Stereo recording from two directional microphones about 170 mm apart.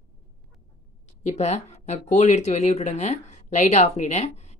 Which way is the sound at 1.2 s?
40° left (ahead or behind).